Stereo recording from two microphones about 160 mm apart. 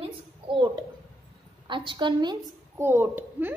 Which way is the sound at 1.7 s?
30° right (ahead or behind).